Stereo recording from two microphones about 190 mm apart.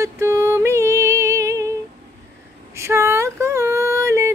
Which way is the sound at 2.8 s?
15° right (ahead or behind).